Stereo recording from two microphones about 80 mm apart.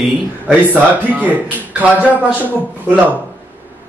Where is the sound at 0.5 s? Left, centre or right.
Centre.